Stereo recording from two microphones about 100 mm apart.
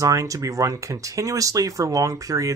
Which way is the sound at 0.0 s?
35° right (ahead or behind).